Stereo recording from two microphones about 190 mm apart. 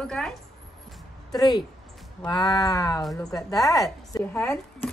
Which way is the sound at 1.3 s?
20° left (ahead or behind).